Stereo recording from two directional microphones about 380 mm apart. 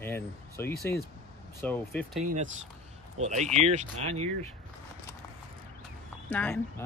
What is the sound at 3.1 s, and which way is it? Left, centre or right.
Speech, centre.